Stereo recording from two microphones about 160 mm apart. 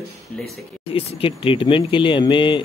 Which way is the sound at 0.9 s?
35° left (ahead or behind).